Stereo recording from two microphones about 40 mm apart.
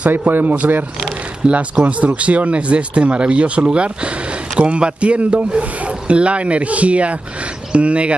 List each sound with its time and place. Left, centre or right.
0.3 s a man's voice: right
1.5 s speech: right